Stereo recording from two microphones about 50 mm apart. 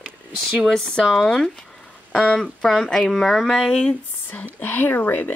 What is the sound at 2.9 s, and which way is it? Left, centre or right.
Speech, centre.